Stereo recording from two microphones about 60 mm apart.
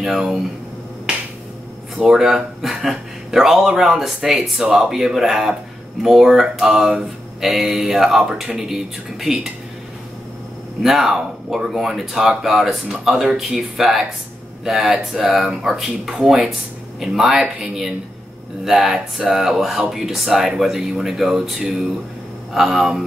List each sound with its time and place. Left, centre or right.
0.0 s speech: centre
2.0 s speech: centre
10.8 s speech: centre